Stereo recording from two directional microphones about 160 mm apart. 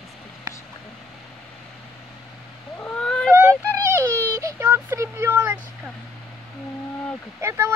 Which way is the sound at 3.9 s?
15° right (ahead or behind).